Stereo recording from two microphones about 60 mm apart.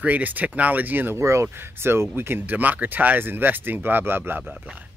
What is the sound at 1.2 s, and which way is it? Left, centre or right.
Speech, right.